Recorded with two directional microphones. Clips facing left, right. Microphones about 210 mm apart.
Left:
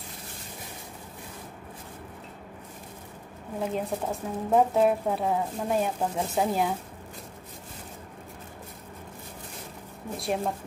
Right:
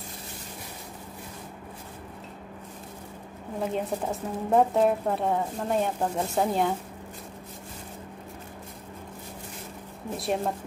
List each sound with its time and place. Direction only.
3.7 s speech: centre (ahead or behind)
10.1 s speech: centre (ahead or behind)